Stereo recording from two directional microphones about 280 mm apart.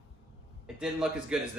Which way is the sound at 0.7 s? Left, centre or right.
Centre.